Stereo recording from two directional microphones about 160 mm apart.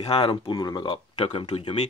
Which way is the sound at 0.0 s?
35° left (ahead or behind).